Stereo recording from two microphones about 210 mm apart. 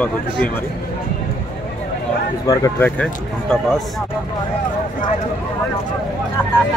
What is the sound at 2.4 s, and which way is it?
Speech, 15° left (ahead or behind).